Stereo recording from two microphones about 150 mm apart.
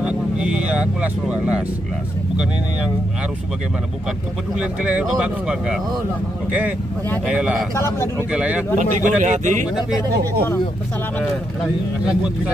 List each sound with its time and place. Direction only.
0.0 s vehicle: 10° right (ahead or behind)
4.6 s speech: 5° right (ahead or behind)
7.2 s speech: 5° right (ahead or behind)
7.7 s speech: 20° left (ahead or behind)
8.3 s speech: 10° right (ahead or behind)
8.7 s speech: 55° right (ahead or behind)